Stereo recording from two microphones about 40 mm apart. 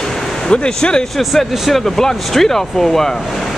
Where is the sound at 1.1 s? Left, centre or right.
Centre.